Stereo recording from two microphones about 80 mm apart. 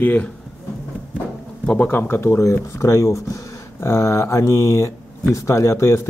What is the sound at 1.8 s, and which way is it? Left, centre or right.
Speech, left.